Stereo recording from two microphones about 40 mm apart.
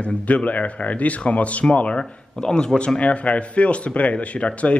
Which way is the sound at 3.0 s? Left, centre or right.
Left.